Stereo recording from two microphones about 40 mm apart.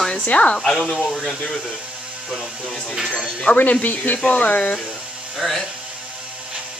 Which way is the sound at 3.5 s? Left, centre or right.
Left.